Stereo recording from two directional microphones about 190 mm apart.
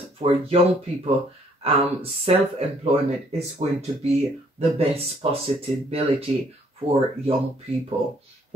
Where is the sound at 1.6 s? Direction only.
30° right (ahead or behind).